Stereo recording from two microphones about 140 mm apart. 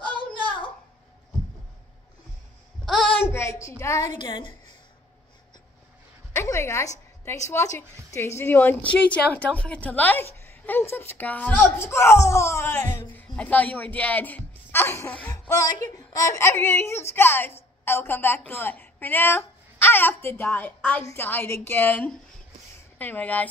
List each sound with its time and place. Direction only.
0.2 s a sound: 35° left (ahead or behind)
2.8 s child singing: centre (ahead or behind)
3.2 s a sound: 15° left (ahead or behind)
4.2 s a woman's voice: 35° left (ahead or behind)
6.3 s a woman's voice: 20° left (ahead or behind)
15.3 s a woman's voice: 20° left (ahead or behind)